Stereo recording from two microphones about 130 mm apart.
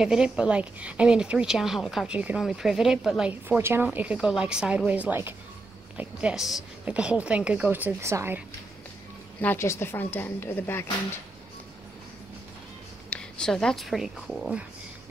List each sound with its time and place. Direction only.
0.0 s a woman's voice: 5° right (ahead or behind)
3.4 s a woman's voice: 15° right (ahead or behind)
9.4 s a woman's voice: 15° left (ahead or behind)
13.1 s speech: 5° left (ahead or behind)